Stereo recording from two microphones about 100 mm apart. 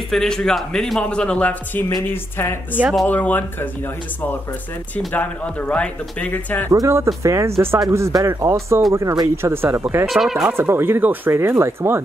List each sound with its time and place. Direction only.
0.1 s a man's voice: 5° left (ahead or behind)
4.9 s a man's voice: 15° left (ahead or behind)
6.7 s speech: 30° right (ahead or behind)
9.4 s speech: 25° right (ahead or behind)
10.0 s speech: centre (ahead or behind)
10.4 s speech: 25° right (ahead or behind)